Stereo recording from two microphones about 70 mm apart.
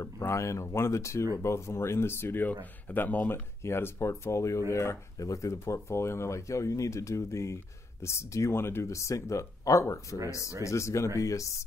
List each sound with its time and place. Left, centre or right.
0.2 s speech: left
3.3 s speech: left